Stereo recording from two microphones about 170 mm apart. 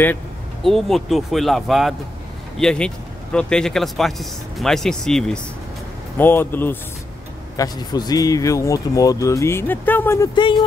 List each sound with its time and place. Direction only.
0.7 s speech: centre (ahead or behind)
7.5 s speech: 20° left (ahead or behind)